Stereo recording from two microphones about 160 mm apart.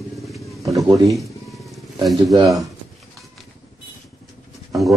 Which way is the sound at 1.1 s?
Centre (ahead or behind).